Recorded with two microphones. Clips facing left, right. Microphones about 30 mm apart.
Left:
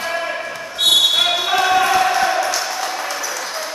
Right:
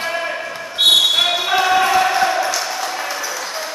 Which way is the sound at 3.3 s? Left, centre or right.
Centre.